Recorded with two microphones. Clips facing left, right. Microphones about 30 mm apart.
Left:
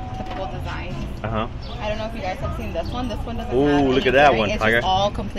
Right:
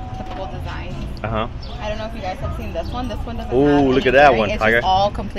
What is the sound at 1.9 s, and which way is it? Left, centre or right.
Speech, right.